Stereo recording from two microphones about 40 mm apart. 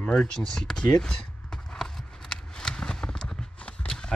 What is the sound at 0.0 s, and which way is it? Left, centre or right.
Speech, centre.